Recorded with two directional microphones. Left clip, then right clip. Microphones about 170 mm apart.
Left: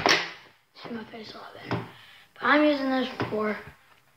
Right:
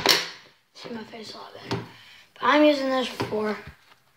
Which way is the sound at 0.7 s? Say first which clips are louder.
Right 1 dB; 10° right (ahead or behind).